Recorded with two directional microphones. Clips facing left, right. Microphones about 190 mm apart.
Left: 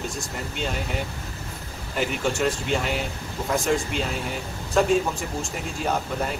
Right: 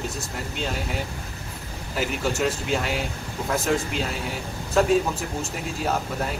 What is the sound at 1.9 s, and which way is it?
Speech, centre (ahead or behind).